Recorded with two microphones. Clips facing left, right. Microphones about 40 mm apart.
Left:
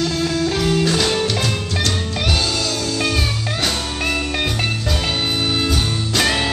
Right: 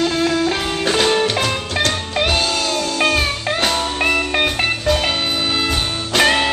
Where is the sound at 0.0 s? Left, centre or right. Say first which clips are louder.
Right 3 dB; right.